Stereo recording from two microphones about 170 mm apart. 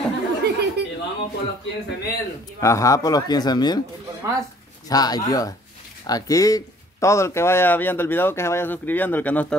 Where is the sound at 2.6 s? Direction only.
20° left (ahead or behind).